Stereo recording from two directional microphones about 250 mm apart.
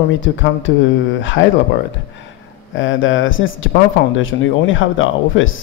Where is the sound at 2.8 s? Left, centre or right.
Left.